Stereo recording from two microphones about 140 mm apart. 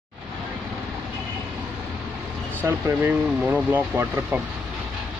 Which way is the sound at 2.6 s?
15° right (ahead or behind).